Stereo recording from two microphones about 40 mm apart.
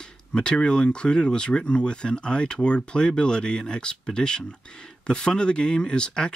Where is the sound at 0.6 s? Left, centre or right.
Left.